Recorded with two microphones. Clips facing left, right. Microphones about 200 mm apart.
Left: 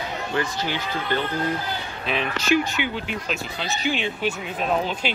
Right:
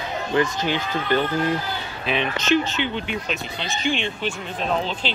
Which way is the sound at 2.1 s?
5° left (ahead or behind).